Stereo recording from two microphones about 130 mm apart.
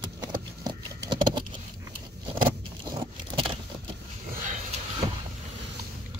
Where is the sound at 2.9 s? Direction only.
40° right (ahead or behind).